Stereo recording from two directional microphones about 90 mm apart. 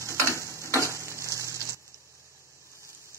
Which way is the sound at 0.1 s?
35° left (ahead or behind).